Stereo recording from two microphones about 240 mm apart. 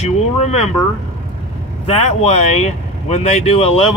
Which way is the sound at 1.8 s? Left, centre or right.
Left.